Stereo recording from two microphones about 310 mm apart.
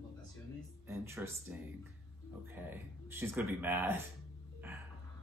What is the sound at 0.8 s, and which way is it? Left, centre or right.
Speech, centre.